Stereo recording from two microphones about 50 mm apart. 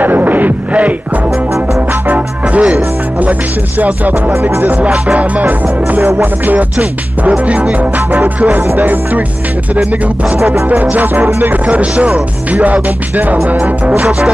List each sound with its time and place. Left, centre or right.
0.0 s music: right
4.4 s music: right
4.6 s music: right
6.8 s music: right
10.7 s music: right
11.6 s music: right